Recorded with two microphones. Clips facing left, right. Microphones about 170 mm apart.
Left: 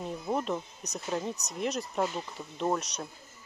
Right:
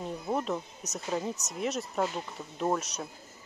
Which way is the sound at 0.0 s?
Centre (ahead or behind).